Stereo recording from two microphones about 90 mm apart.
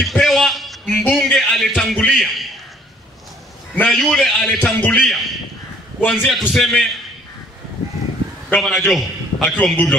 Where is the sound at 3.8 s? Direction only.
Centre (ahead or behind).